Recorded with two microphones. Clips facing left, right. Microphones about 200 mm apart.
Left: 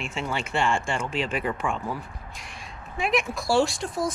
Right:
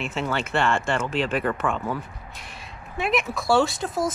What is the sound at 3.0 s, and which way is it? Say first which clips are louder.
Speech: right 1 dB; centre (ahead or behind).